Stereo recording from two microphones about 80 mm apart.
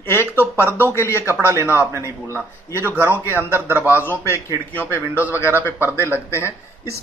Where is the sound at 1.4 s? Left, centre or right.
Right.